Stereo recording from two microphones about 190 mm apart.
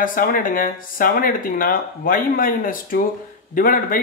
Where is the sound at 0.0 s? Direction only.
45° left (ahead or behind).